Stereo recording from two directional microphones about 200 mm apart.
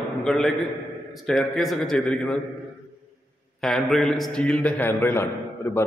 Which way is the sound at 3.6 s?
Centre (ahead or behind).